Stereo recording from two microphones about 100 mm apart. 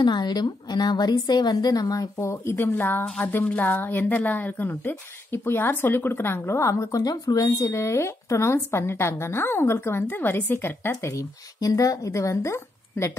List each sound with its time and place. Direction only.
0.0 s a woman's voice: 45° left (ahead or behind); by 13.1 s 25° left (ahead or behind)